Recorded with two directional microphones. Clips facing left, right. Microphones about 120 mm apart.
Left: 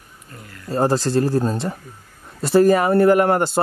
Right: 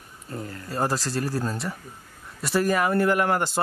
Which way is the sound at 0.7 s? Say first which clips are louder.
Left 8 dB; 25° left (ahead or behind).